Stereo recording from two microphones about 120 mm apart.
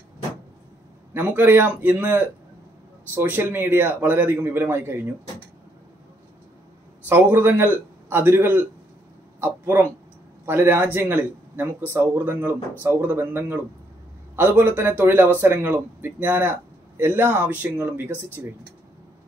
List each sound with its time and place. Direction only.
1.1 s a man's voice: 15° right (ahead or behind)
7.1 s a man's voice: 15° right (ahead or behind)